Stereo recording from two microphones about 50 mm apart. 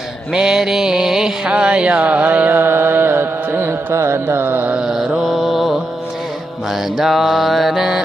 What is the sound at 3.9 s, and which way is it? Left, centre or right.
Mantra, right.